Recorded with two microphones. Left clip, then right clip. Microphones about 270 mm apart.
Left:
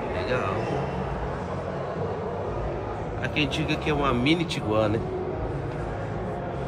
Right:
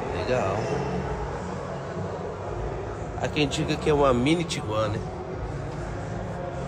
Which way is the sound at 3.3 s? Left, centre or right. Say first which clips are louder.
Even; centre.